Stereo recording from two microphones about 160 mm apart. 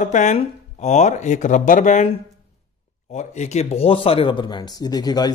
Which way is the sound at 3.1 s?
45° left (ahead or behind).